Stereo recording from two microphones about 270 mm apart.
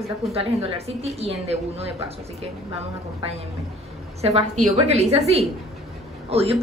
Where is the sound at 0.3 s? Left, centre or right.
Right.